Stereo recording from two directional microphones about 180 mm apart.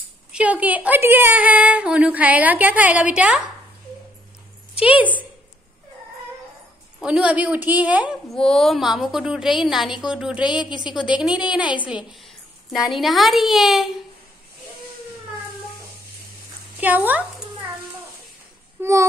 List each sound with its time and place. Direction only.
0.3 s a woman's voice: 5° right (ahead or behind)
4.8 s a woman's voice: 10° right (ahead or behind)
7.0 s a woman's voice: 5° right (ahead or behind)
8.1 s a child's voice: centre (ahead or behind)
16.7 s a sound: 10° right (ahead or behind)
18.8 s a child's voice: 15° right (ahead or behind)